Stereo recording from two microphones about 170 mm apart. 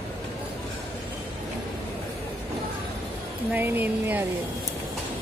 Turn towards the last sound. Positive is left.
turn(degrees=-10)  # may be behind; listen again after turning